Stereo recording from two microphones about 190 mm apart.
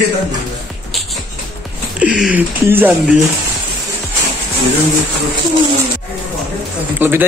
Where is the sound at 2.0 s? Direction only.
5° right (ahead or behind).